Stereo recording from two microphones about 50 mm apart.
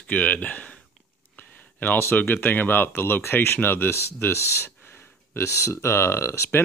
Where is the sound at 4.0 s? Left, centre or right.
Left.